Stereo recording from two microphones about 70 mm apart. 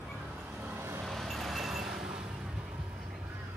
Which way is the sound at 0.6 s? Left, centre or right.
Right.